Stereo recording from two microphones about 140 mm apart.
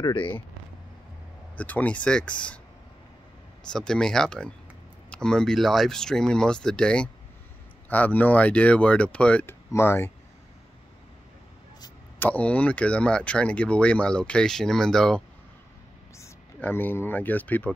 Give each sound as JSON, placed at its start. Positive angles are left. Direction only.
{"t": 0.0, "sound": "speech", "side_deg": 35}
{"t": 1.6, "sound": "speech", "side_deg": 10}
{"t": 3.6, "sound": "speech", "side_deg": 5}
{"t": 12.2, "sound": "speech", "side_deg": 10}